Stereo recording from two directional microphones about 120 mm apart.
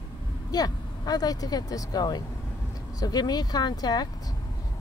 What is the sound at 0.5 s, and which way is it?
Speech, 30° left (ahead or behind).